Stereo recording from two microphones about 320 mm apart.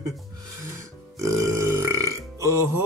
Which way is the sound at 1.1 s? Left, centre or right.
Centre.